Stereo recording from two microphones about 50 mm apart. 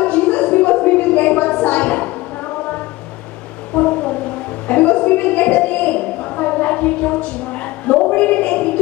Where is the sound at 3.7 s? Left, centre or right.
Left.